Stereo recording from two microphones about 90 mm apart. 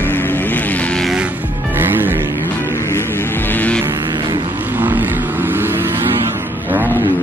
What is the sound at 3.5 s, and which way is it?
Vehicle, 15° left (ahead or behind).